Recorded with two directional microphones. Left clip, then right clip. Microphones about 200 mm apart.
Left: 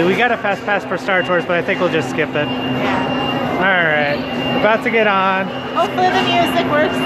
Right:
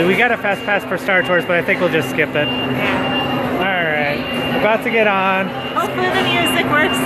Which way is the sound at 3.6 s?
10° left (ahead or behind).